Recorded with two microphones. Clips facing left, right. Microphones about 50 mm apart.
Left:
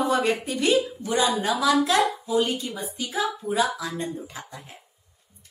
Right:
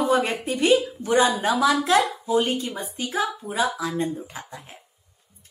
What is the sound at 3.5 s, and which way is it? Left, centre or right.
Speech, right.